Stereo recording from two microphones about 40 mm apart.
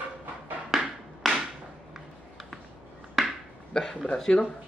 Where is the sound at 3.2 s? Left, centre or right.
Centre.